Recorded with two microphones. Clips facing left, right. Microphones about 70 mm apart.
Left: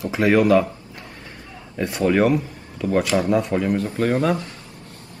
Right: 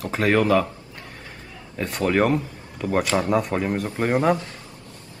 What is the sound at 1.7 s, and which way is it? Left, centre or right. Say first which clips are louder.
Speech: left 2 dB; centre.